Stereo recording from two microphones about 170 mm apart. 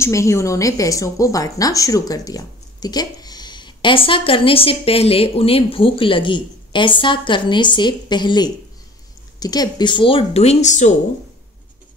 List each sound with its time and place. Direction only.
0.0 s a woman's voice: 15° left (ahead or behind); by 11.0 s 45° left (ahead or behind)